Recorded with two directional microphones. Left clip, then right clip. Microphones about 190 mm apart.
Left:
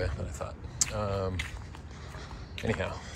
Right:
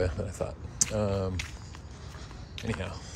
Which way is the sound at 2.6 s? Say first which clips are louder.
Left 4 dB; 15° right (ahead or behind).